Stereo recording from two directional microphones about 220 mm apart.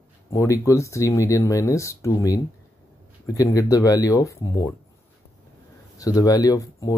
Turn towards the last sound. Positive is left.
turn(degrees=15)  # may be behind; listen again after turning